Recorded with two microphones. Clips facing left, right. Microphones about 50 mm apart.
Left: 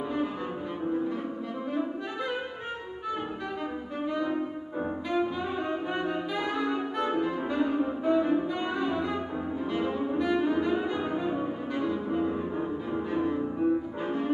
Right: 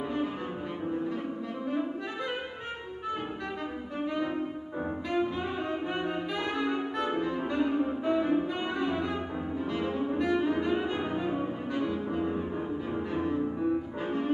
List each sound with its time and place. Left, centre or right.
5.1 s bowed string instrument: centre
6.6 s music: centre
9.8 s cello: centre
10.3 s bowed string instrument: centre
11.1 s music: centre